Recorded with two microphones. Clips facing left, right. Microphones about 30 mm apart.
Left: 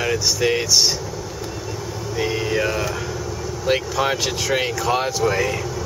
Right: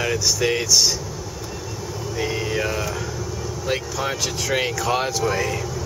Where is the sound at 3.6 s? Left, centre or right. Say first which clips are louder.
Left 5 dB; left.